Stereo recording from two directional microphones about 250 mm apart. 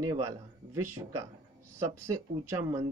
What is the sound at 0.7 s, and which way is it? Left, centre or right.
Speech, right.